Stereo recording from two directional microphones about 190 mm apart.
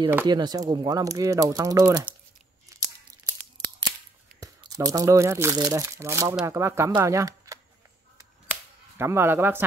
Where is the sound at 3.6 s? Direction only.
20° right (ahead or behind).